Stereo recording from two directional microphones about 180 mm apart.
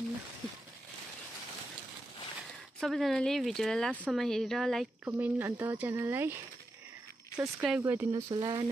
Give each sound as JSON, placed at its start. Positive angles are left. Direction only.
{"t": 2.8, "sound": "speech", "side_deg": 0}
{"t": 3.9, "sound": "speech", "side_deg": -10}
{"t": 4.2, "sound": "speech", "side_deg": 0}
{"t": 5.0, "sound": "speech", "side_deg": -10}
{"t": 8.1, "sound": "speech", "side_deg": -25}